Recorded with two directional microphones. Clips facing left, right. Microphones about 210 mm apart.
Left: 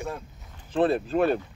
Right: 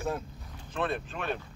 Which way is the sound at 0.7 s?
35° left (ahead or behind).